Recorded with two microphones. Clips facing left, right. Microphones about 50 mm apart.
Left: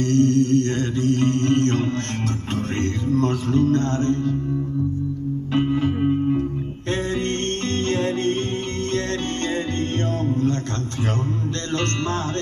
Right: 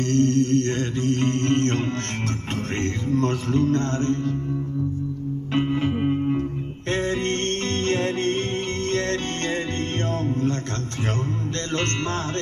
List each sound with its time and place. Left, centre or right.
0.0 s mantra: right
2.8 s music: right
5.8 s music: centre
6.9 s music: right
11.7 s music: right